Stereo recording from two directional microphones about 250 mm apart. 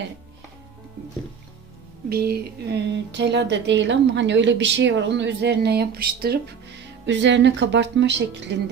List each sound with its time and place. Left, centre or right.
2.0 s speech: right